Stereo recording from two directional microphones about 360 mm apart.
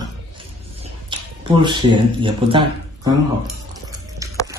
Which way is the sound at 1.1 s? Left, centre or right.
Centre.